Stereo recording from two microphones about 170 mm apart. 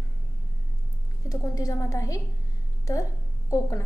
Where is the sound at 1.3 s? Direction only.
20° left (ahead or behind).